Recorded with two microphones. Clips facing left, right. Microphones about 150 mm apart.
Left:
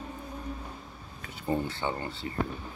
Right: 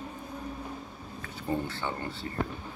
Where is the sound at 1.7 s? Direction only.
15° left (ahead or behind).